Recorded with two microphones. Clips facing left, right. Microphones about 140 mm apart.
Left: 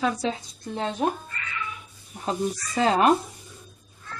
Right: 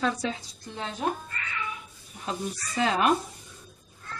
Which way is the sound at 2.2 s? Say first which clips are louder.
Left 6 dB; 35° left (ahead or behind).